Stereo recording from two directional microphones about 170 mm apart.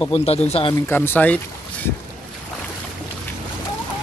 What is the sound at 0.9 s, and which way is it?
Speech, 10° left (ahead or behind).